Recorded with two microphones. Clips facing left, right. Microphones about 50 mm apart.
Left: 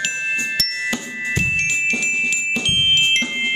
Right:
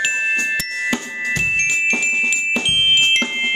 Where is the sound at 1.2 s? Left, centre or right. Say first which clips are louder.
Right 1 dB; centre.